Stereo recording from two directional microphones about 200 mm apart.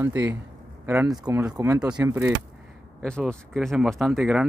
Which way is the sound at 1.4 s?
10° right (ahead or behind).